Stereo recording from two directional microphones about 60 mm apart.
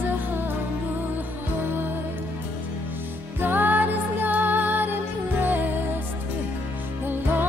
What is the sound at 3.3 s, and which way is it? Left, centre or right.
Music, right.